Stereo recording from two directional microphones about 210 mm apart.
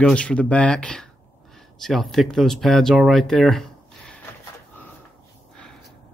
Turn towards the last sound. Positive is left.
turn(degrees=5)  # may be behind; listen again after turning